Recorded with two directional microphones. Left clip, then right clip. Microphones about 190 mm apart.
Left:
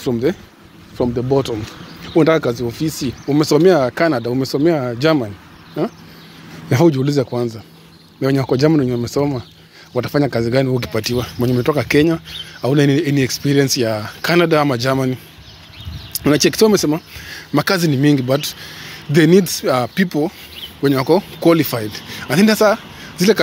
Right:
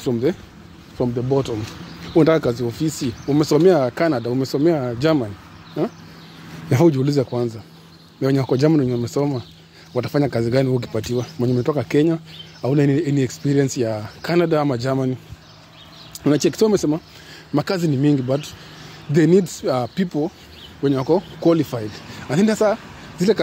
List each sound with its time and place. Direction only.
0.3 s speech: centre (ahead or behind)
1.0 s speech: 25° left (ahead or behind)
2.1 s speech: 10° right (ahead or behind)
6.7 s speech: centre (ahead or behind)
16.2 s speech: centre (ahead or behind)